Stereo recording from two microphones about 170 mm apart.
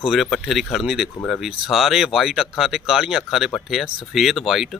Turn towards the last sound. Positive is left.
turn(degrees=0)  # may be behind; listen again after turning